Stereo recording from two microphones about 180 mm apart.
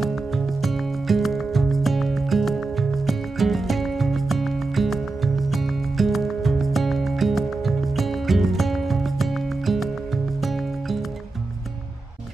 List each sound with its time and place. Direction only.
0.0 s music: centre (ahead or behind)